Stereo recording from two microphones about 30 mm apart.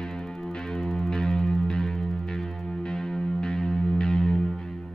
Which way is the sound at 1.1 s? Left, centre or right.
Left.